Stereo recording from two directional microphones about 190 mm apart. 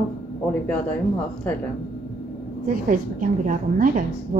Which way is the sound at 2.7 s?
45° right (ahead or behind).